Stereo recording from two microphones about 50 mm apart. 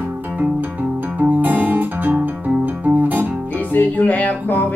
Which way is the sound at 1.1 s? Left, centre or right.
Right.